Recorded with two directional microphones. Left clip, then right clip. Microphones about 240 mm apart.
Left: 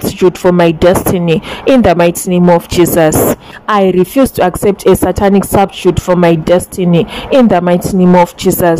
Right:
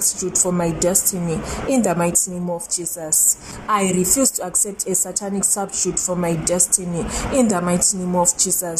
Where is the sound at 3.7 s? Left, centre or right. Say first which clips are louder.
Left 10 dB; left.